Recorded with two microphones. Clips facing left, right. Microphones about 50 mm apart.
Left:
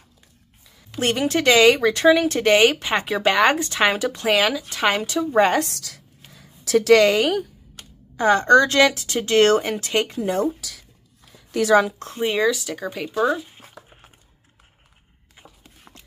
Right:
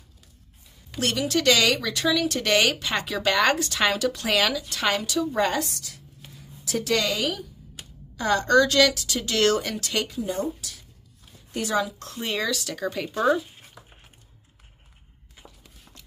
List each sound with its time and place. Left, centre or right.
1.0 s a woman's voice: left
5.8 s a sound: left
8.2 s speech: left
10.2 s speech: left
11.5 s a woman's voice: left
11.8 s speech: left
12.2 s speech: centre
15.6 s a sound: left